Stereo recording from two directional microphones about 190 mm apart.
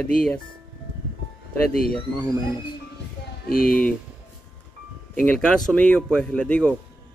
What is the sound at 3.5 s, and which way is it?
Speech, 50° left (ahead or behind).